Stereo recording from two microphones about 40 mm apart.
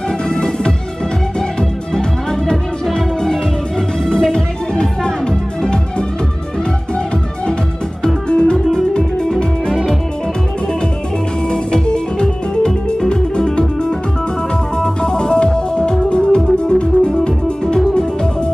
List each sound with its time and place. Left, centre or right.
0.3 s music: left
2.5 s music: centre
8.0 s music: left
11.5 s music: centre